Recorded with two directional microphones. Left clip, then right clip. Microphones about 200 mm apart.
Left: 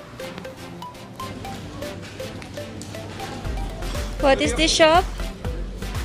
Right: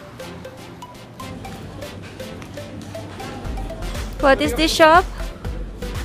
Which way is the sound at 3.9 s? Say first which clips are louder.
Right 3 dB; 10° right (ahead or behind).